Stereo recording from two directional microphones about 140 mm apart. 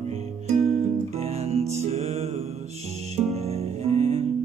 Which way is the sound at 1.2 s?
50° right (ahead or behind).